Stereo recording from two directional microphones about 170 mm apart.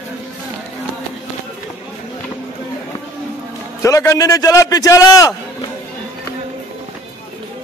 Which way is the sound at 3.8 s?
20° left (ahead or behind).